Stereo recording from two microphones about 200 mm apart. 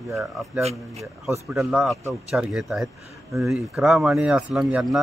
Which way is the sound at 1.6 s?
5° right (ahead or behind).